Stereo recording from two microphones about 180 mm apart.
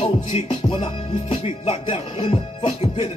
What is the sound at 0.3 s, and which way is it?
Music, 30° left (ahead or behind).